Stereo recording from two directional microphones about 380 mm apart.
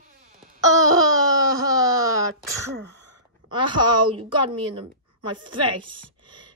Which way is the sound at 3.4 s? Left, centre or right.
Centre.